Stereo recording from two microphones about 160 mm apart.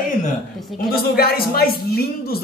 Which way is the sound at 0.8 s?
65° left (ahead or behind).